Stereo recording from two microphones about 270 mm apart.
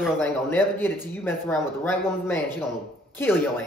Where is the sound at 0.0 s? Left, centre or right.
Centre.